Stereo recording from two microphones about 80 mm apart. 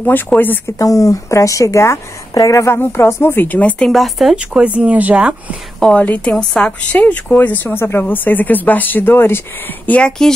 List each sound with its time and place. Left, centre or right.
0.0 s speech: left
0.7 s a woman's voice: left
2.7 s speech: left
3.9 s speech: centre
5.8 s a woman's voice: centre